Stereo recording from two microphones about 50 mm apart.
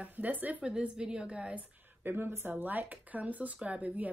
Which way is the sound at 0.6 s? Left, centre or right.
Centre.